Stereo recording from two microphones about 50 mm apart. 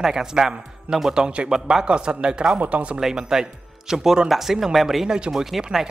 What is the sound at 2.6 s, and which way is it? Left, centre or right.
Speech, right.